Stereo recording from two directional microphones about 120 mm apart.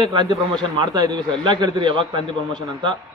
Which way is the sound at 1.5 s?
45° right (ahead or behind).